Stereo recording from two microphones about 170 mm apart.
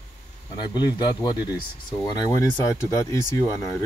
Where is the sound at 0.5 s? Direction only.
25° left (ahead or behind).